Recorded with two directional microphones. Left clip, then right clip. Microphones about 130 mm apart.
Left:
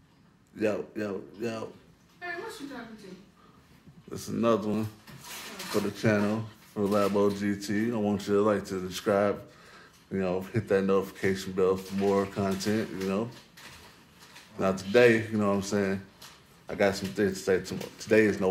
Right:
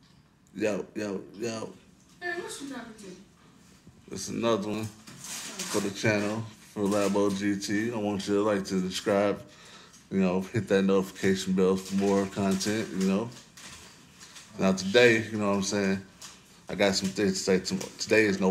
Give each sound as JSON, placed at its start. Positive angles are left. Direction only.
{"t": 0.6, "sound": "speech", "side_deg": 15}
{"t": 4.1, "sound": "speech", "side_deg": 20}
{"t": 5.9, "sound": "speech", "side_deg": 20}
{"t": 14.6, "sound": "speech", "side_deg": 20}